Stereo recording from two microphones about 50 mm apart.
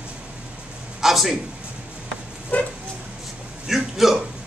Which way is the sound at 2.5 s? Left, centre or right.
Left.